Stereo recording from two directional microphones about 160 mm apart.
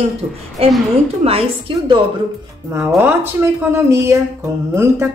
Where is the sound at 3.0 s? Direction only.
15° right (ahead or behind).